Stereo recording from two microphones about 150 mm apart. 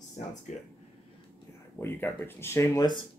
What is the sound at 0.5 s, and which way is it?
Speech, 50° left (ahead or behind).